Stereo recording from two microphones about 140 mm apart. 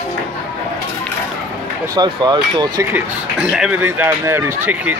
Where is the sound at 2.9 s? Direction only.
5° right (ahead or behind).